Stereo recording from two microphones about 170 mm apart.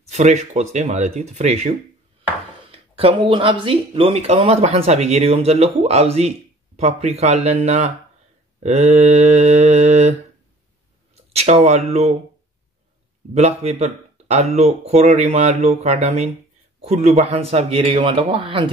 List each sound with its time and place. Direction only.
0.1 s speech: 40° right (ahead or behind)
2.7 s speech: 30° right (ahead or behind)
11.3 s speech: 40° right (ahead or behind)
13.3 s speech: 40° right (ahead or behind)